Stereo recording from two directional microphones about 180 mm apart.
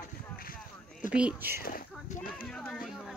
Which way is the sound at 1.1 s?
10° right (ahead or behind).